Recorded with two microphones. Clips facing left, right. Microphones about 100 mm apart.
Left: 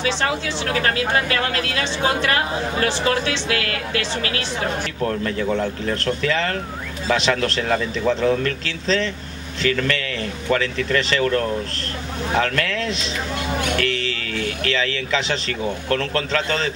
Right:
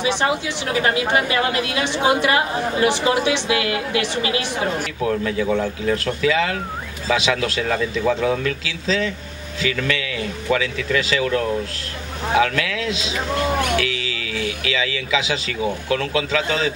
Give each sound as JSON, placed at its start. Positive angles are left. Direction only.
{"t": 0.0, "sound": "speech", "side_deg": -15}